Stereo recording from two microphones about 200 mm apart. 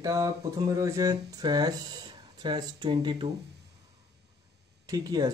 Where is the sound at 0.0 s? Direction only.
15° right (ahead or behind).